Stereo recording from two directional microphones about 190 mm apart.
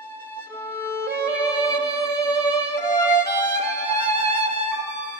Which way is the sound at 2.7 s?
15° left (ahead or behind).